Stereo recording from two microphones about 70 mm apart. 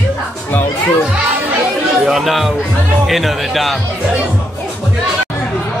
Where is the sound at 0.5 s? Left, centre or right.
Left.